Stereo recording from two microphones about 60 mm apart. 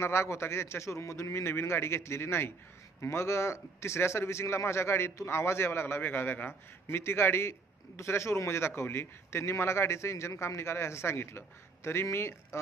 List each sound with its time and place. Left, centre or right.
0.0 s a man's voice: left